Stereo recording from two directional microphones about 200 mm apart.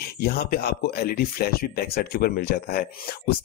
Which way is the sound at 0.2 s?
50° left (ahead or behind).